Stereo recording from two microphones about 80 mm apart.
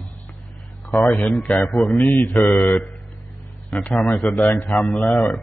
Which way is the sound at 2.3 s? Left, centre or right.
Centre.